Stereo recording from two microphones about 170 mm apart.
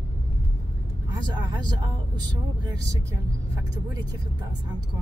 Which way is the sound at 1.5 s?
25° right (ahead or behind).